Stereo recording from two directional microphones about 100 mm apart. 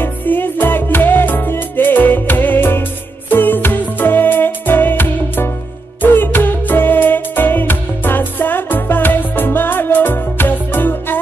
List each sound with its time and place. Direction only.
0.0 s music: 20° left (ahead or behind)